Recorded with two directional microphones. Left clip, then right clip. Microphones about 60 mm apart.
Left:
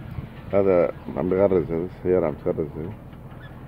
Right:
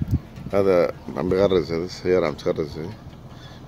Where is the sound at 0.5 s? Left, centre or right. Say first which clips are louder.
Right 1 dB; right.